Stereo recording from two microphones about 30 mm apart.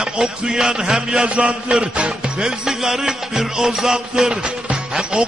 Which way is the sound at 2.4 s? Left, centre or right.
Centre.